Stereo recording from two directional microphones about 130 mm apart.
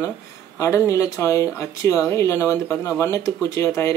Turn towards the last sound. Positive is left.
turn(degrees=20)  # may be behind; listen again after turning